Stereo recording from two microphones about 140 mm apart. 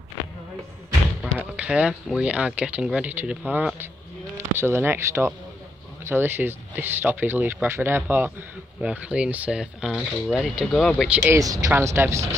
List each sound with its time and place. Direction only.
1.2 s artillery fire: 10° right (ahead or behind)
2.1 s speech: 10° right (ahead or behind)
11.3 s speech: 25° right (ahead or behind)